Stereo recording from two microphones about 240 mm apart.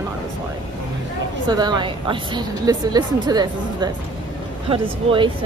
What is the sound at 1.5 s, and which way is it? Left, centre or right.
Speech, centre.